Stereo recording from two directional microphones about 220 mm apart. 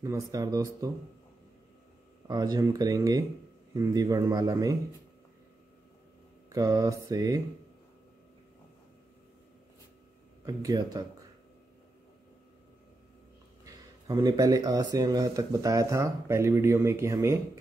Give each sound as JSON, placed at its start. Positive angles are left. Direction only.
{"t": 0.0, "sound": "speech", "side_deg": -15}
{"t": 2.2, "sound": "speech", "side_deg": -15}
{"t": 6.5, "sound": "speech", "side_deg": -15}
{"t": 10.4, "sound": "speech", "side_deg": -15}
{"t": 13.7, "sound": "speech", "side_deg": -15}